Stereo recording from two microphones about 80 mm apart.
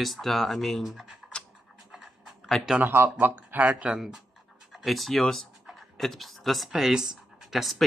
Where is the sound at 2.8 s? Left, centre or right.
Right.